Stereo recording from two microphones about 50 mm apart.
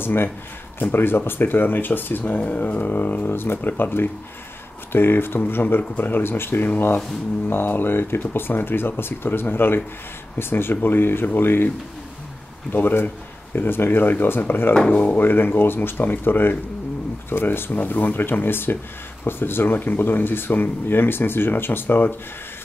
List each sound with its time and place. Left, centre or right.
0.0 s speech: left
2.3 s speech: left
12.7 s speech: left
14.9 s speech: left
15.1 s speech: left
17.7 s speech: left